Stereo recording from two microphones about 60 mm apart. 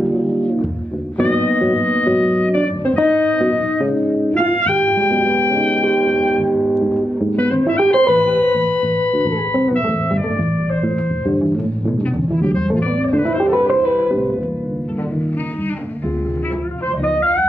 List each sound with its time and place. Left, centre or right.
1.1 s music: left
12.4 s music: centre
13.7 s music: right
17.0 s music: left